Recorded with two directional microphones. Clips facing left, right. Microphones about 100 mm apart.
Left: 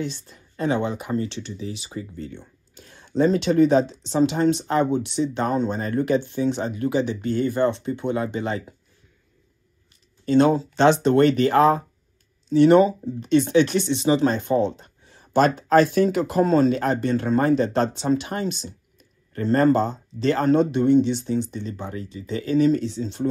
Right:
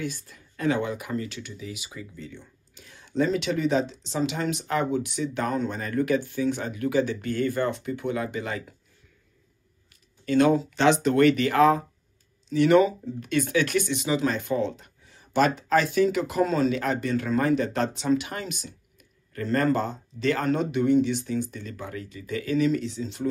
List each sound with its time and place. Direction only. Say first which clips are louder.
0.0 s speech: left 3 dB; 25° left (ahead or behind)
1.9 s speech: left 7 dB; 45° left (ahead or behind); by 8.7 s 30° left (ahead or behind)
10.2 s speech: left 3 dB; 30° left (ahead or behind)
14.0 s speech: left 6 dB; 35° left (ahead or behind)